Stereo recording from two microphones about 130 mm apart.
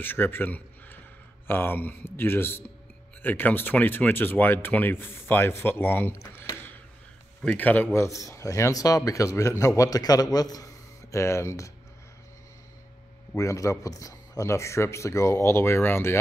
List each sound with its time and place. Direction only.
0.0 s a man's voice: 15° left (ahead or behind)
13.4 s speech: 25° left (ahead or behind)